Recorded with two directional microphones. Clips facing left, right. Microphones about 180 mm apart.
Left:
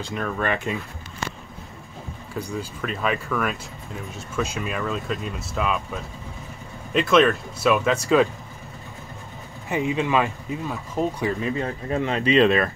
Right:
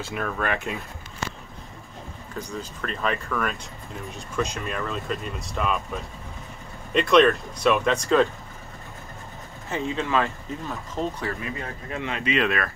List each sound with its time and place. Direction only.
0.0 s speech: 5° right (ahead or behind)
2.5 s speech: 5° left (ahead or behind)
6.9 s speech: centre (ahead or behind)
9.7 s speech: 15° left (ahead or behind)
11.6 s speech: 35° left (ahead or behind)